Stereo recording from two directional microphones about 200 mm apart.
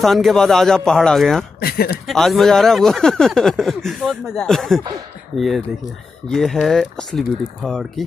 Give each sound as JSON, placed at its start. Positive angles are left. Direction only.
{"t": 0.0, "sound": "speech", "side_deg": 0}
{"t": 1.6, "sound": "speech", "side_deg": 50}
{"t": 2.0, "sound": "speech", "side_deg": 0}
{"t": 6.2, "sound": "speech", "side_deg": 0}